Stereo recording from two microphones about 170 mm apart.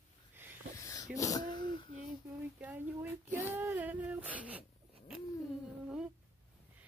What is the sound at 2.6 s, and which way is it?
Female singing, 10° right (ahead or behind).